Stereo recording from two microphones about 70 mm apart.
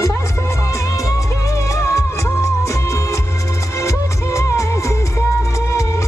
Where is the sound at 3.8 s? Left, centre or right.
Left.